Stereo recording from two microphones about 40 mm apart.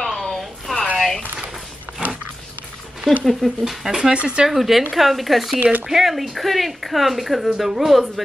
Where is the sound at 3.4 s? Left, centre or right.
Centre.